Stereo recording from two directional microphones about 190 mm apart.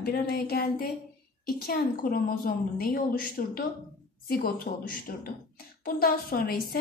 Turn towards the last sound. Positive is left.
turn(degrees=50)  # may be behind; listen again after turning